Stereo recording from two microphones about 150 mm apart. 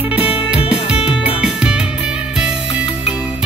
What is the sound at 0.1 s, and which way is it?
Music, 10° right (ahead or behind).